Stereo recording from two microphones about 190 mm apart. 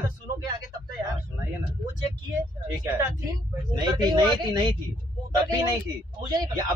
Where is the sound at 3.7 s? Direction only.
25° right (ahead or behind).